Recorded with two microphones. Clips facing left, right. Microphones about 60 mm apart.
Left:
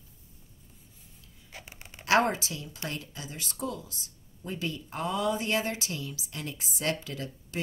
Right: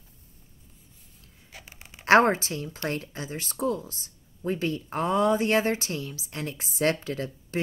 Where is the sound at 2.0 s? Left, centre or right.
Right.